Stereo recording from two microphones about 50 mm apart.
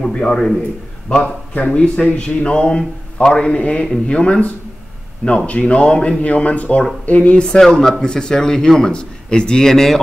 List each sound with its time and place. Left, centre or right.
0.0 s speech: centre
1.2 s a man's voice: left
5.5 s a man's voice: left
7.4 s speech: centre